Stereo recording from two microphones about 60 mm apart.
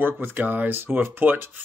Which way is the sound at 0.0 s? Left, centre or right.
Right.